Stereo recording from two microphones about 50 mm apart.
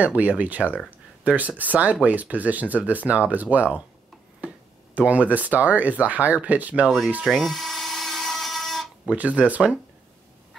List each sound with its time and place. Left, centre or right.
0.0 s speech: right
4.9 s speech: right
7.2 s dental drill: centre
9.0 s speech: right